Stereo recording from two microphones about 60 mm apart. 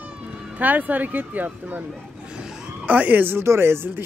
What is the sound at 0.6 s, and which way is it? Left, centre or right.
Speech, right.